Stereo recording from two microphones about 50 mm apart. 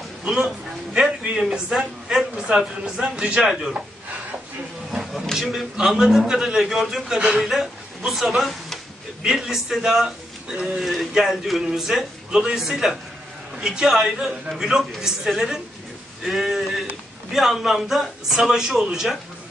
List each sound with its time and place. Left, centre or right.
1.0 s a man's voice: centre
5.2 s a man's voice: centre
5.8 s a man's voice: centre